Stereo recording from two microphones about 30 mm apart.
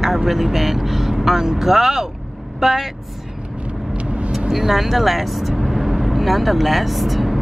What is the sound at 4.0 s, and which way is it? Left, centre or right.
Vehicle, right.